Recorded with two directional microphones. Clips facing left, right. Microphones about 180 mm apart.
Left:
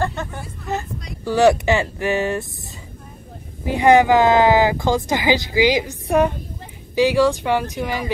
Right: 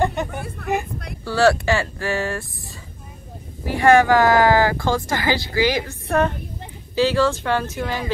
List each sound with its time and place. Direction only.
0.0 s hubbub: 15° right (ahead or behind)
0.3 s hubbub: 60° right (ahead or behind)
1.2 s speech: 15° left (ahead or behind)
3.6 s speech: 20° left (ahead or behind)